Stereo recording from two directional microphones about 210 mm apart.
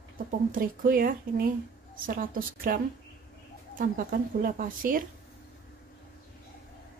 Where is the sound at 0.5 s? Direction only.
40° right (ahead or behind).